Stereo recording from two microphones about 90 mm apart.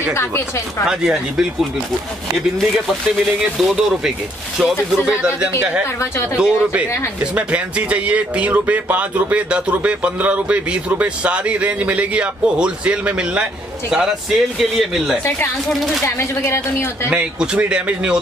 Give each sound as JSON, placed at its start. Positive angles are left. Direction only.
{"t": 0.1, "sound": "speech", "side_deg": 30}
{"t": 0.8, "sound": "speech", "side_deg": -5}
{"t": 2.6, "sound": "speech", "side_deg": 0}
{"t": 15.2, "sound": "speech", "side_deg": 25}
{"t": 15.7, "sound": "speech", "side_deg": 0}
{"t": 16.2, "sound": "speech", "side_deg": 30}
{"t": 17.1, "sound": "speech", "side_deg": -10}